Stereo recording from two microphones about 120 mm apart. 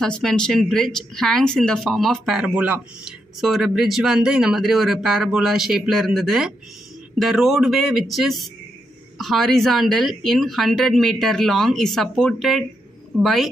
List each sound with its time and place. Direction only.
0.0 s speech: 5° left (ahead or behind); by 3.2 s 10° right (ahead or behind)
3.3 s speech: centre (ahead or behind)